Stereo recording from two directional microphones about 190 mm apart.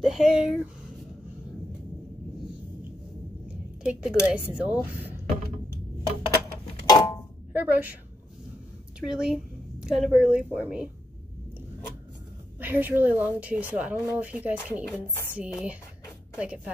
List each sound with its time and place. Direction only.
0.0 s speech: centre (ahead or behind)
3.4 s a sound: 5° right (ahead or behind)
4.3 s a woman's voice: 5° right (ahead or behind)
6.9 s a sound: 20° left (ahead or behind)
7.5 s a woman's voice: 10° right (ahead or behind)
9.0 s speech: 5° right (ahead or behind)
12.5 s a woman's voice: 10° right (ahead or behind)
15.0 s speech: 10° left (ahead or behind)
15.3 s a woman's voice: 5° right (ahead or behind)